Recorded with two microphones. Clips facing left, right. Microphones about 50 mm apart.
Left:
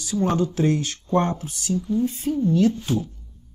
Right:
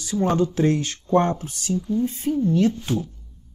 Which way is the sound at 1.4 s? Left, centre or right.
Right.